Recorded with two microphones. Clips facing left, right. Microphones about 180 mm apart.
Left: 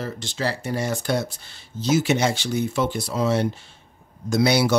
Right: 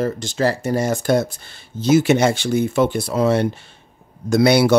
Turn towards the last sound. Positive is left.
turn(degrees=-60)  # may be behind; listen again after turning